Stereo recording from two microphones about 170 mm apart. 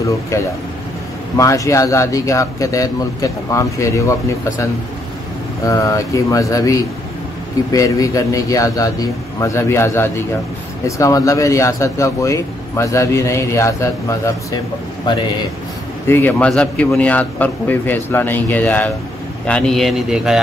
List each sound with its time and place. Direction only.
1.3 s speech: 20° left (ahead or behind)
5.7 s speech: 20° left (ahead or behind)
16.1 s a man's voice: 10° left (ahead or behind)